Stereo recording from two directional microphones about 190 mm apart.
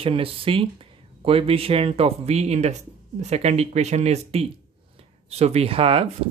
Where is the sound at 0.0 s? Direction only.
30° right (ahead or behind).